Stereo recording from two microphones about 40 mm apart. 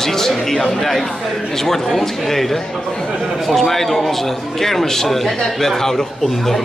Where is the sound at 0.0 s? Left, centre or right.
Centre.